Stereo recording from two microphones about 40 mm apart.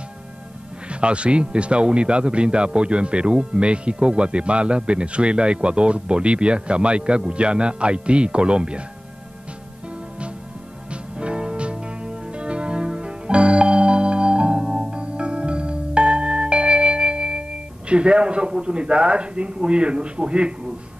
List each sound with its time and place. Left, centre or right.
0.8 s a man's voice: right
10.9 s music: right